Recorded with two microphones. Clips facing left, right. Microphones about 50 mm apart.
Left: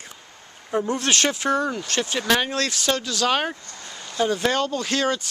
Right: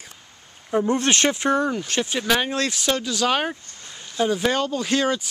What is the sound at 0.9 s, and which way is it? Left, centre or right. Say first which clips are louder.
Speech: right 2 dB; right.